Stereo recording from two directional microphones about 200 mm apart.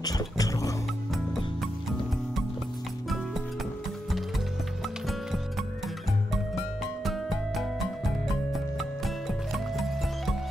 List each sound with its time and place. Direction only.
0.0 s music: 20° left (ahead or behind)
5.0 s music: centre (ahead or behind)
7.1 s music: centre (ahead or behind)